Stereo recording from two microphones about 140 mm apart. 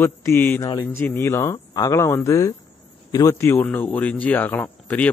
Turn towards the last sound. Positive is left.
turn(degrees=10)  # may be behind; listen again after turning